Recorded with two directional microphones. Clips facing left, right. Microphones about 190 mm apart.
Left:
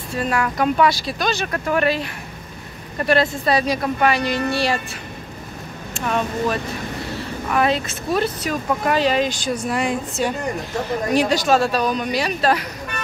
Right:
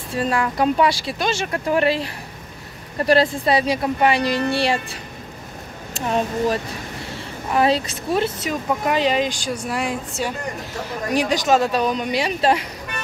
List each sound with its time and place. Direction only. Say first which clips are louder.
0.1 s speech: even; 30° right (ahead or behind)
5.9 s speech: right 1 dB; 30° right (ahead or behind)